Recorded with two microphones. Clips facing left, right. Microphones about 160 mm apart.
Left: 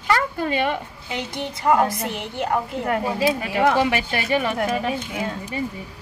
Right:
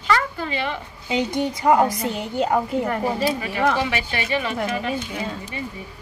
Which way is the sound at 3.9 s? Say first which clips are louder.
Left 2 dB; 45° left (ahead or behind).